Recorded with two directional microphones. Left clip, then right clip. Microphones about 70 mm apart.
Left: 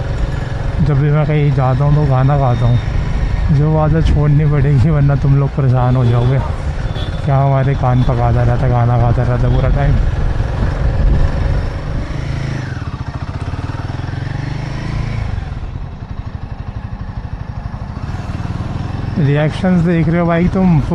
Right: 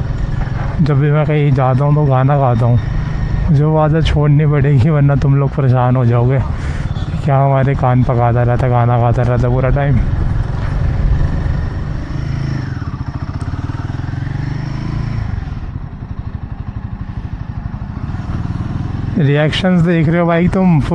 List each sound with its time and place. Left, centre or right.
0.8 s speech: right
11.1 s vehicle: left
19.2 s speech: right